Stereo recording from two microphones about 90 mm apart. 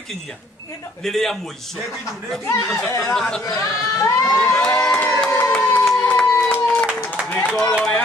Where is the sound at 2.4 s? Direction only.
30° left (ahead or behind).